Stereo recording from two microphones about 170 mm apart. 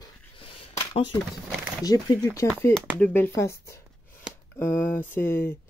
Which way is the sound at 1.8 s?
20° left (ahead or behind).